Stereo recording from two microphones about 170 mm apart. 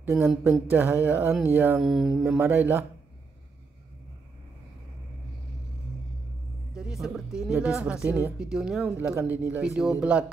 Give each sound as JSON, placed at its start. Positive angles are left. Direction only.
{"t": 0.0, "sound": "speech", "side_deg": -15}
{"t": 1.9, "sound": "speech", "side_deg": -5}
{"t": 2.2, "sound": "speech", "side_deg": -15}
{"t": 6.7, "sound": "speech", "side_deg": -5}